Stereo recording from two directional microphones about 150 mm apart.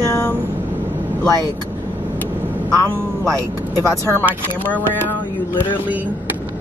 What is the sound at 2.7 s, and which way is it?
Speech, 20° right (ahead or behind).